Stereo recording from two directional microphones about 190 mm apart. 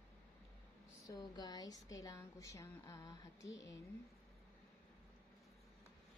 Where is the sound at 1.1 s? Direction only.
20° left (ahead or behind).